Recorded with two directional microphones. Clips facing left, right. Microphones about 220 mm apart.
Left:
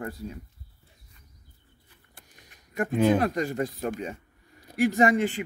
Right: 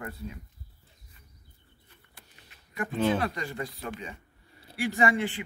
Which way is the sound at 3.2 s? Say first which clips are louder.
Left 6 dB; 45° left (ahead or behind).